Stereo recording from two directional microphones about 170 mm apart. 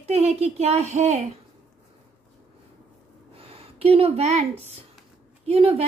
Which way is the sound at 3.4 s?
35° right (ahead or behind).